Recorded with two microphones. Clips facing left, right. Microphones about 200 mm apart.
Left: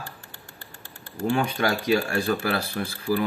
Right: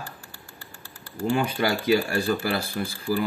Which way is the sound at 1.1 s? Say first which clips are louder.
Even; 5° right (ahead or behind).